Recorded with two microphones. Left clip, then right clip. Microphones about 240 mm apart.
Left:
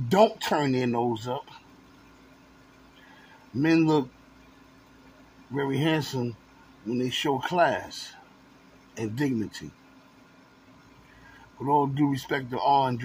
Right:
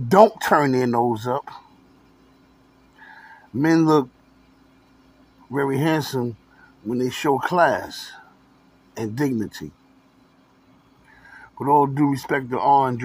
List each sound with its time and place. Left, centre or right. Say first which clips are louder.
0.1 s speech: right 7 dB; centre
3.6 s speech: right 5 dB; centre
5.5 s speech: right 5 dB; centre
11.6 s speech: right 6 dB; centre